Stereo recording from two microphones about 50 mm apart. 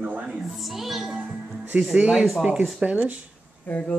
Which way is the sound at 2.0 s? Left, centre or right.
Centre.